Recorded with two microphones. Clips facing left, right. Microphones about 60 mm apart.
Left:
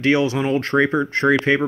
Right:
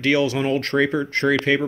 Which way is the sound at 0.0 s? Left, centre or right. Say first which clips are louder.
Left 1 dB; left.